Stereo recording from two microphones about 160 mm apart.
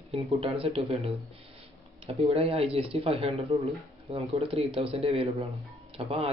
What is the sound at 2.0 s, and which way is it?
Speech, 40° right (ahead or behind).